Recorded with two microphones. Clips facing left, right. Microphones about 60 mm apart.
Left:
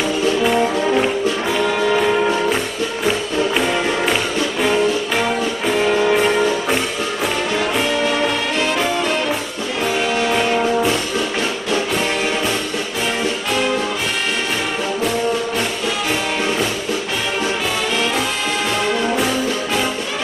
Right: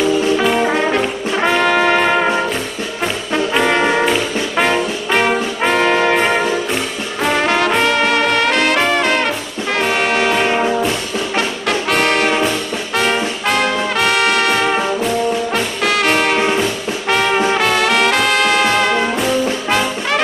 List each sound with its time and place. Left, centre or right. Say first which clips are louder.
0.4 s brass instrument: right 2 dB; right
3.5 s brass instrument: right 4 dB; right
9.8 s music: right 3 dB; right
11.9 s brass instrument: right 5 dB; right
15.5 s music: right 4 dB; right
17.1 s brass instrument: right 11 dB; right